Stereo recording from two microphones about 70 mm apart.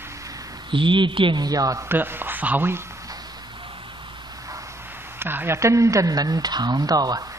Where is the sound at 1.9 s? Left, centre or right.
Right.